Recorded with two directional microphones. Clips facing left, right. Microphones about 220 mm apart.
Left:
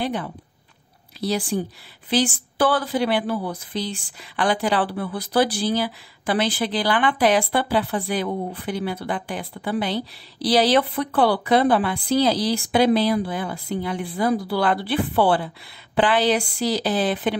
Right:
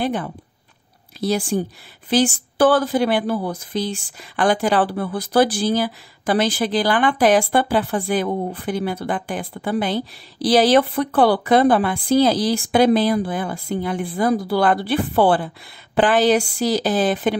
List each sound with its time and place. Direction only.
0.0 s speech: 50° right (ahead or behind)